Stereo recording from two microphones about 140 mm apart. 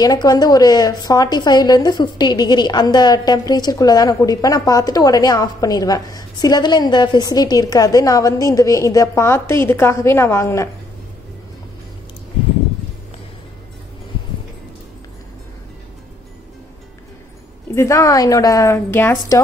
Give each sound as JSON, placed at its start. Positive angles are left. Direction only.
{"t": 0.0, "sound": "a woman's voice", "side_deg": 30}
{"t": 17.7, "sound": "a woman's voice", "side_deg": 20}